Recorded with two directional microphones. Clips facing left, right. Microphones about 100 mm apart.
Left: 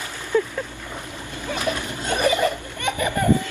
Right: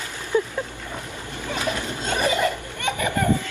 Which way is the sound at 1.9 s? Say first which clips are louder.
Left 2 dB; 15° left (ahead or behind).